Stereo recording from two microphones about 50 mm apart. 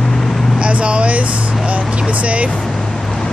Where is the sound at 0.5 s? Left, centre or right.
Right.